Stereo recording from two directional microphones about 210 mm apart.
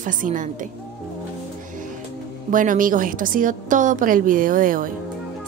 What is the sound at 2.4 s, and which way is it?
Speech, 40° right (ahead or behind).